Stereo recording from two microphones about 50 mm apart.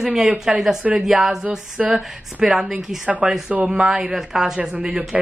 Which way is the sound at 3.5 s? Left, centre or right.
Right.